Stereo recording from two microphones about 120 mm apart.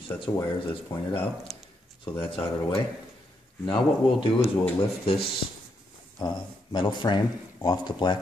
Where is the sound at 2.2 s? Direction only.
45° left (ahead or behind).